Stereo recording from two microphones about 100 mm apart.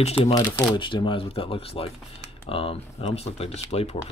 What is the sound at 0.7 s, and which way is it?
Speech, 55° left (ahead or behind).